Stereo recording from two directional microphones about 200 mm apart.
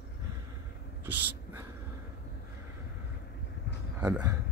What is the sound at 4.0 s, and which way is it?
Speech, 10° right (ahead or behind).